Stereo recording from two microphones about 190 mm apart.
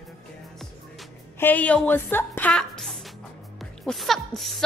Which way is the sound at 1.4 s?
10° left (ahead or behind).